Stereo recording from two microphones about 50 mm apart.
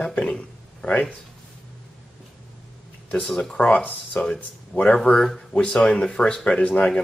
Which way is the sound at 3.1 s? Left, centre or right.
Centre.